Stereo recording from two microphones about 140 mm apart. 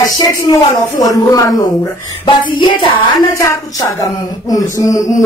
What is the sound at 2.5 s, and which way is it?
Music, 35° left (ahead or behind).